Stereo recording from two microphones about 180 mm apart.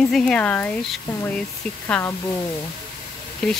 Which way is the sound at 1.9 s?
10° left (ahead or behind).